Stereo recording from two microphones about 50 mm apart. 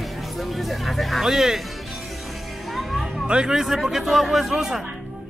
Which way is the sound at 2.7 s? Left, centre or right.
Centre.